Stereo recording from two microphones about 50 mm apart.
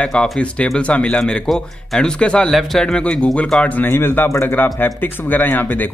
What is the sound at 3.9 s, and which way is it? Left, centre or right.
Speech, left.